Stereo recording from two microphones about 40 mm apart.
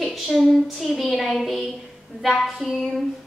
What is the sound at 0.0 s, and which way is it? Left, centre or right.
A woman's voice, centre.